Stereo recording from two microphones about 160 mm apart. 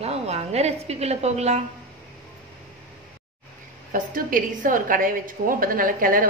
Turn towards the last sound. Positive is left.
turn(degrees=-60)  # may be behind; listen again after turning